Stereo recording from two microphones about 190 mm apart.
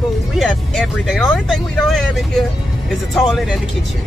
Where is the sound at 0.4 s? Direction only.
Centre (ahead or behind).